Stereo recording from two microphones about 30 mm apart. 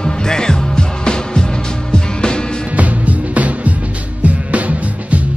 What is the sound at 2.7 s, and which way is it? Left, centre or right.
Music, right.